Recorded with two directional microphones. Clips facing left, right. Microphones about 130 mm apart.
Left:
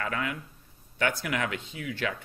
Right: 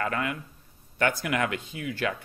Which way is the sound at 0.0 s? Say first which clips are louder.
Right 3 dB; 45° right (ahead or behind).